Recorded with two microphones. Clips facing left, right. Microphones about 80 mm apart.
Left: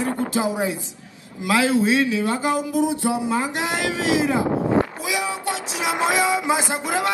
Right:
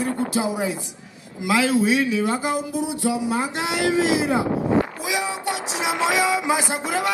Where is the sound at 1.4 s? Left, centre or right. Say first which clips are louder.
Left 1 dB; right.